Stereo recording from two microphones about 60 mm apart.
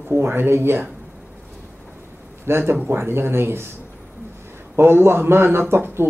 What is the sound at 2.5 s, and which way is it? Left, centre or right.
A man's voice, right.